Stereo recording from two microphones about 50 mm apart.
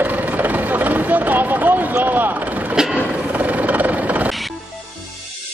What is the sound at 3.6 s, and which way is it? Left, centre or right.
Vehicle, right.